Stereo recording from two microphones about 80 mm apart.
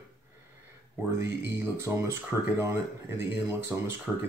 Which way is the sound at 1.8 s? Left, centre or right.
Right.